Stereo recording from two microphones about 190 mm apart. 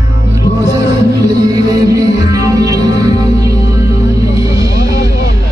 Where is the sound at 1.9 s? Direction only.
20° right (ahead or behind).